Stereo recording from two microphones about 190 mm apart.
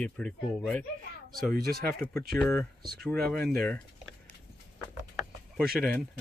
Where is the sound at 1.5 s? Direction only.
50° right (ahead or behind).